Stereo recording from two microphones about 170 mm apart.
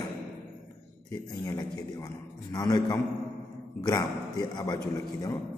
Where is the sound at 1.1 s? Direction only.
20° left (ahead or behind).